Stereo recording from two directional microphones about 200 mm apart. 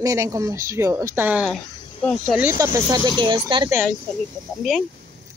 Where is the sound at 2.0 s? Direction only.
10° left (ahead or behind).